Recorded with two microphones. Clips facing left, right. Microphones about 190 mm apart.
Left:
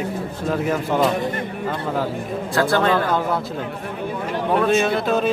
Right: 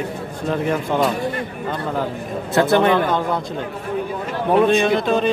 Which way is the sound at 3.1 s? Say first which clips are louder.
Right 1 dB; 5° left (ahead or behind).